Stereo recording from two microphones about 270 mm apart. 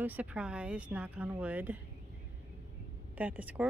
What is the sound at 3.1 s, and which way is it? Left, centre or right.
Speech, centre.